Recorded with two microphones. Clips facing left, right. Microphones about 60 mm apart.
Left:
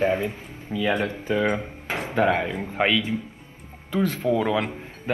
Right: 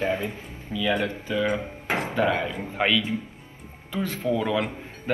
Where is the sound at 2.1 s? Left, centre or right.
Left.